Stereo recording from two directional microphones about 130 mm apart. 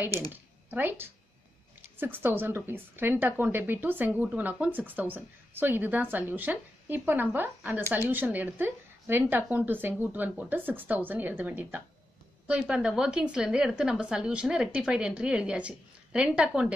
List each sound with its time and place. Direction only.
0.3 s a woman's voice: 15° right (ahead or behind)